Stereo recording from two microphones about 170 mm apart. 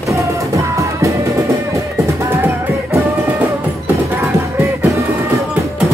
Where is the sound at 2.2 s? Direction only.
15° right (ahead or behind).